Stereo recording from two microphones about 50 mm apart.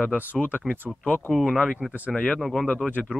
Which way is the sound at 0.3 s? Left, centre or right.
Left.